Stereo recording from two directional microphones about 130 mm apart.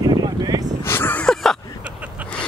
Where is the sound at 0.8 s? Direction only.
15° left (ahead or behind).